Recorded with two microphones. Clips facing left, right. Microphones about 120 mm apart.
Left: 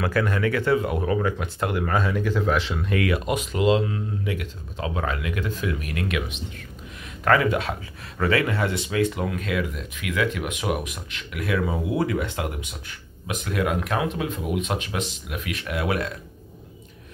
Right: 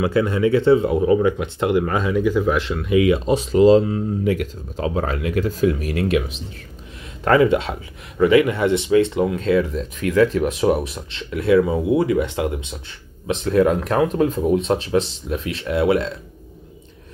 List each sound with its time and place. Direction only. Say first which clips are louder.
0.0 s speech: right 5 dB; 20° right (ahead or behind); by 2.9 s centre (ahead or behind)
2.9 s speech: right 8 dB; 15° right (ahead or behind)
3.3 s speech: right 9 dB; 35° right (ahead or behind)